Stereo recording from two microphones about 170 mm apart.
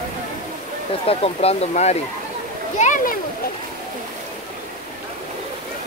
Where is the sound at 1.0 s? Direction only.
35° left (ahead or behind).